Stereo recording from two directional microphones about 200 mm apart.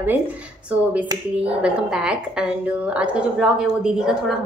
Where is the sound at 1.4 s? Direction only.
5° right (ahead or behind).